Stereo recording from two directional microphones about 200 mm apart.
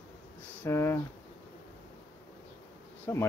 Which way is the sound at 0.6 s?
10° left (ahead or behind).